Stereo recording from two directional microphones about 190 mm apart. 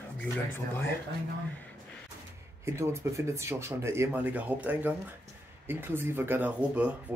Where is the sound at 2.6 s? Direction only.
15° right (ahead or behind).